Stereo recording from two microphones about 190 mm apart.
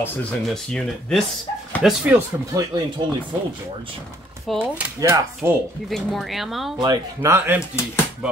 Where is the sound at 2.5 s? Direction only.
20° right (ahead or behind).